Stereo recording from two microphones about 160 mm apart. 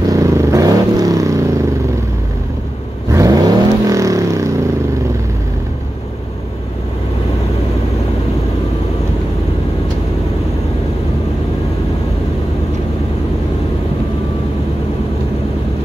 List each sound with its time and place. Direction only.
0.0 s vehicle: 20° right (ahead or behind)
3.1 s vehicle: 20° right (ahead or behind)